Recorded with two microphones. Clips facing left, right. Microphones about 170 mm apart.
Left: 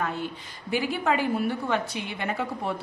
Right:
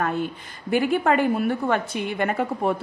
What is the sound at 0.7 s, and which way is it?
A woman's voice, 50° right (ahead or behind).